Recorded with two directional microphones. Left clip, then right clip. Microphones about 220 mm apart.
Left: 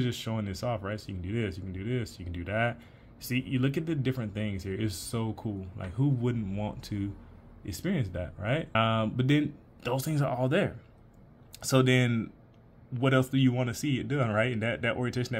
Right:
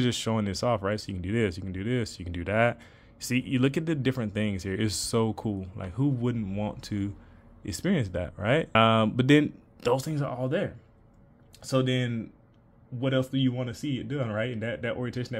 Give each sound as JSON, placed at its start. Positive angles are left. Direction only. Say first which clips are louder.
{"t": 0.0, "sound": "speech", "louder": "right 6 dB", "side_deg": -20}
{"t": 9.9, "sound": "speech", "louder": "left 1 dB", "side_deg": -5}